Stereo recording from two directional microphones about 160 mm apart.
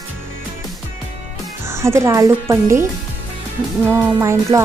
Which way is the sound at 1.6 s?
15° right (ahead or behind).